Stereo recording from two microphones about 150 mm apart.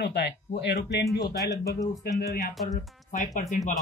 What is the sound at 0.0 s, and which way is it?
Speech, 90° left.